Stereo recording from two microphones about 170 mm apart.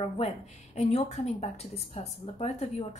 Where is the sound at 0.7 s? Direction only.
40° left (ahead or behind).